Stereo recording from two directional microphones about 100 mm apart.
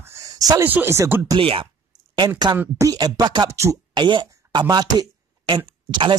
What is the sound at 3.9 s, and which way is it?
Speech, 50° right (ahead or behind).